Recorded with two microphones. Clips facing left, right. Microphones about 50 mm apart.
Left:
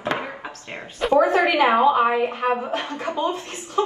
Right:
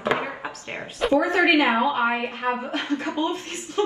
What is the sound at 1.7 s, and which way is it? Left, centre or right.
Speech, left.